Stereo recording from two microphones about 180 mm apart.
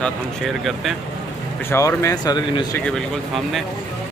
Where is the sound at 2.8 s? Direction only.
5° left (ahead or behind).